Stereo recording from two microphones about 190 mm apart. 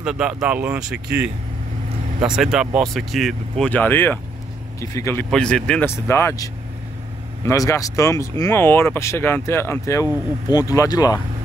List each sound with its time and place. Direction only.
0.0 s speech: 5° right (ahead or behind)
1.0 s speech: 60° right (ahead or behind)
2.2 s speech: centre (ahead or behind); by 5.2 s 15° left (ahead or behind)
5.3 s speech: 5° left (ahead or behind)